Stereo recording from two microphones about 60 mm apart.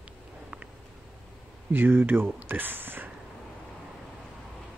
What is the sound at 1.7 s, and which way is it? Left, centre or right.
Speech, right.